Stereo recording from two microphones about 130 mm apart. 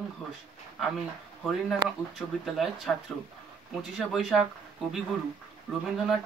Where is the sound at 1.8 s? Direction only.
35° right (ahead or behind).